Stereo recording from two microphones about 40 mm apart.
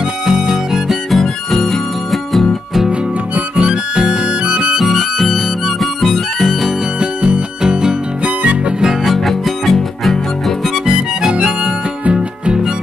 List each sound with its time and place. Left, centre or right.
0.8 s music: centre
3.3 s harmonica: right
3.9 s music: centre
4.7 s music: centre
6.0 s harmonica: centre
7.0 s music: right
9.0 s music: centre
11.3 s harmonica: right